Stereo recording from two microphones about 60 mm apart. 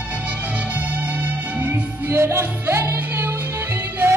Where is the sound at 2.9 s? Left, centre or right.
Right.